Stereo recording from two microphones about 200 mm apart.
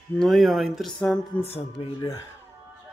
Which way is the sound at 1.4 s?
25° left (ahead or behind).